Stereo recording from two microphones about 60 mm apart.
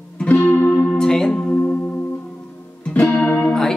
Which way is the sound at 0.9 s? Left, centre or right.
Centre.